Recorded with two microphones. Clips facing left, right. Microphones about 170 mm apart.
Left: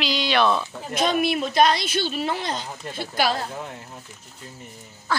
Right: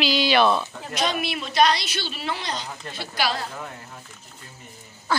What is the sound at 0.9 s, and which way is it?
Speech, 50° left (ahead or behind).